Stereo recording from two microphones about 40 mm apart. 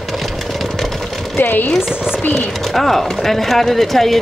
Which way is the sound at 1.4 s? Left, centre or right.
Left.